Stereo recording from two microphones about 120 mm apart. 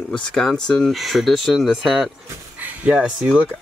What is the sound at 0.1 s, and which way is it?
Speech, 5° left (ahead or behind).